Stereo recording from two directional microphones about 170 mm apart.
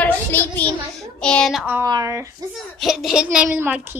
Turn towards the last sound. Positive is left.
turn(degrees=-10)  # may be behind; listen again after turning